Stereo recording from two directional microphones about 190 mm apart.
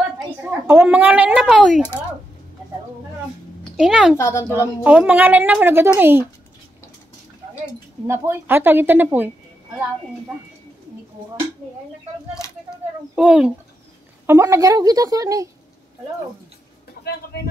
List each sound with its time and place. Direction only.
0.5 s speech: 10° right (ahead or behind)
3.7 s speech: 5° right (ahead or behind)
4.2 s a woman's voice: 15° left (ahead or behind)
4.8 s a woman's voice: 5° right (ahead or behind)
8.1 s a woman's voice: 15° right (ahead or behind)
13.1 s a woman's voice: 5° right (ahead or behind)